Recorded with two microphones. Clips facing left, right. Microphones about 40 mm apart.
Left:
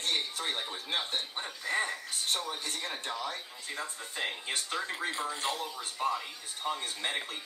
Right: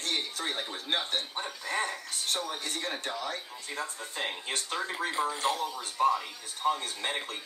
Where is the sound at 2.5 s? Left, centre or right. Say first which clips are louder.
Right 2 dB; right.